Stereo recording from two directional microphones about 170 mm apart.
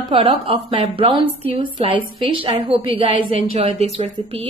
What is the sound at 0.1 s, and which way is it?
A woman's voice, 35° right (ahead or behind).